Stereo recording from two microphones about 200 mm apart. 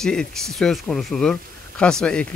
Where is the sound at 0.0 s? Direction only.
5° left (ahead or behind).